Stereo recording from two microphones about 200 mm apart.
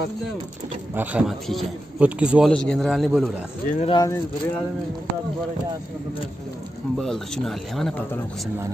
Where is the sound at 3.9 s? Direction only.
15° left (ahead or behind).